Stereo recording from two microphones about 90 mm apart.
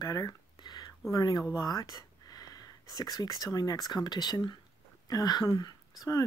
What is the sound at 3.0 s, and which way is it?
Speech, 45° left (ahead or behind).